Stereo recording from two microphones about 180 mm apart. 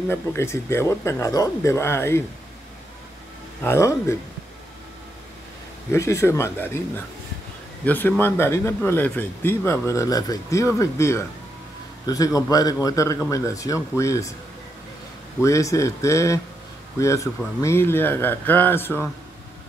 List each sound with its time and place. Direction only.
0.1 s speech: 15° left (ahead or behind)
3.6 s speech: 15° left (ahead or behind)
5.9 s speech: 15° left (ahead or behind)
7.8 s speech: 10° left (ahead or behind)
15.4 s speech: 15° left (ahead or behind)